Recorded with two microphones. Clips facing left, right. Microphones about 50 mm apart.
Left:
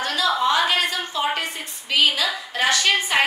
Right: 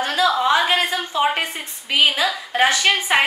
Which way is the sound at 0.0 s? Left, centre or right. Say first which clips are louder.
Right 3 dB; right.